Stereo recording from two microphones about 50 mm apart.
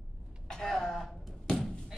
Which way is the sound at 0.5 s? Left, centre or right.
Centre.